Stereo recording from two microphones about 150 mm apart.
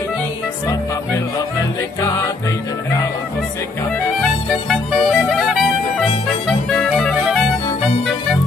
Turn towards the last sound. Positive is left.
turn(degrees=0)  # may be behind; listen again after turning